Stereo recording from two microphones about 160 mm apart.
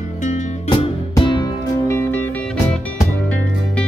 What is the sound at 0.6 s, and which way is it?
Music, 30° left (ahead or behind).